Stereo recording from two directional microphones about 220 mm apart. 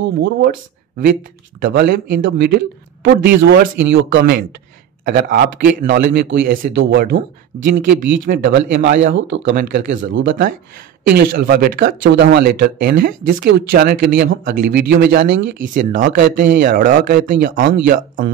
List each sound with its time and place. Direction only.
0.0 s speech: 55° right (ahead or behind)
1.6 s speech: 50° right (ahead or behind)
8.7 s speech: 40° right (ahead or behind)
9.4 s speech: 40° right (ahead or behind)
15.7 s speech: 35° right (ahead or behind)